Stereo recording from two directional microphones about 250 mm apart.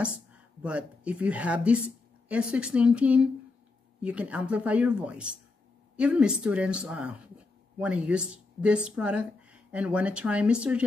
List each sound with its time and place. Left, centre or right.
0.0 s speech: centre